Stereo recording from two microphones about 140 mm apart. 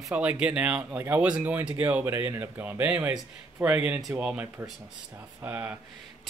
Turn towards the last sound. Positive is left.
turn(degrees=-15)  # may be behind; listen again after turning